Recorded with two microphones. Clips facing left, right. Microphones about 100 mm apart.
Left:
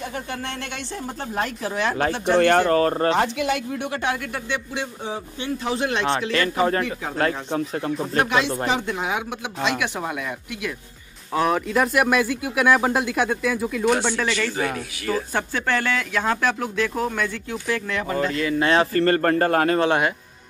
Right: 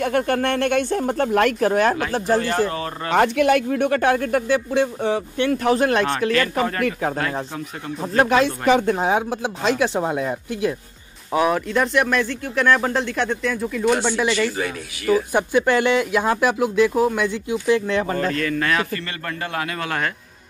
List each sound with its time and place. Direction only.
0.0 s speech: 60° right (ahead or behind)
2.1 s speech: 40° right (ahead or behind)
2.4 s speech: 50° left (ahead or behind)
3.1 s speech: 55° right (ahead or behind)
5.0 s speech: 65° right (ahead or behind)
5.8 s speech: 45° right (ahead or behind)
6.6 s speech: 25° left (ahead or behind)
7.2 s speech: 40° left (ahead or behind)
8.2 s speech: 40° right (ahead or behind)
11.4 s speech: centre (ahead or behind)
14.1 s speech: 10° right (ahead or behind); by 18.1 s 30° right (ahead or behind)
18.4 s speech: 15° left (ahead or behind)
18.7 s speech: 30° left (ahead or behind)
19.0 s speech: 45° left (ahead or behind)